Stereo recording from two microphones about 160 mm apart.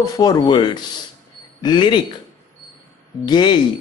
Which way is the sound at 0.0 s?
25° left (ahead or behind).